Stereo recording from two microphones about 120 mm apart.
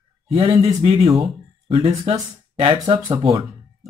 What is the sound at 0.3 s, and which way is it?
Speech, 55° right (ahead or behind).